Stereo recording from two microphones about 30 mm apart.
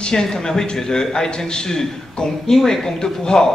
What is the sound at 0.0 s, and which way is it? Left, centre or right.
A man's voice, left.